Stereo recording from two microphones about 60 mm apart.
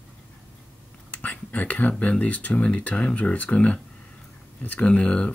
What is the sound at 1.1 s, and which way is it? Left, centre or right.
Speech, left.